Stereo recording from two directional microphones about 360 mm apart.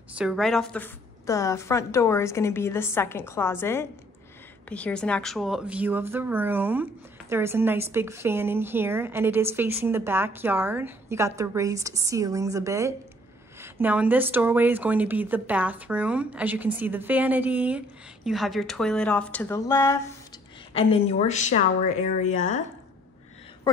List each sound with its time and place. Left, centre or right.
0.1 s a woman's voice: centre